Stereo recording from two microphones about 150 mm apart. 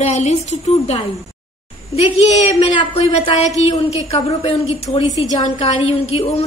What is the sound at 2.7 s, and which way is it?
Speech, 35° left (ahead or behind).